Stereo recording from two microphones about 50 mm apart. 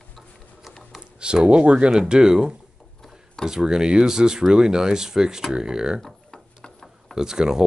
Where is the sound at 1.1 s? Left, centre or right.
Centre.